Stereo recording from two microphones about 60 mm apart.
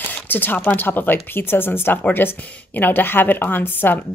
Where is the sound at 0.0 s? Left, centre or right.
Left.